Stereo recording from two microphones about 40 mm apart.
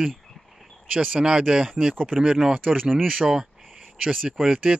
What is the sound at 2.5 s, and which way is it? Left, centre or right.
Speech, right.